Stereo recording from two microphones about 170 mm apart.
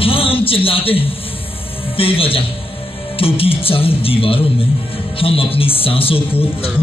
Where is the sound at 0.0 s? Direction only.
35° left (ahead or behind).